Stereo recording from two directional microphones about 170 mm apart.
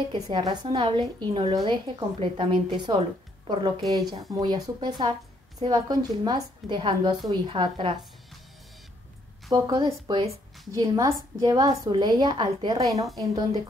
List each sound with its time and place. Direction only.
0.1 s a woman's voice: 25° right (ahead or behind)
4.1 s a woman's voice: 25° right (ahead or behind)
9.5 s a woman's voice: 25° right (ahead or behind)